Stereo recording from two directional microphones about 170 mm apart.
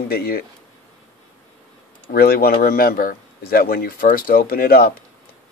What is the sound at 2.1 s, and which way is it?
A man's voice, 60° left (ahead or behind).